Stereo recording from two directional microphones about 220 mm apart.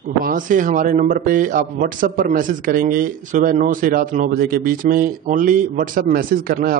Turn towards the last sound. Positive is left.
turn(degrees=-40)  # may be behind; listen again after turning